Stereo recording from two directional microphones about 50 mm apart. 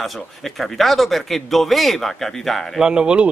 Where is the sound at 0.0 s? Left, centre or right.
Centre.